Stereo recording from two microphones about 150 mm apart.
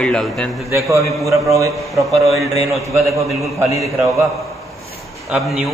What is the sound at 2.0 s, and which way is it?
Speech, centre (ahead or behind).